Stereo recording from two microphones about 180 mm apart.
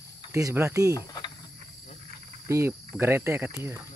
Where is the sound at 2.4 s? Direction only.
15° right (ahead or behind).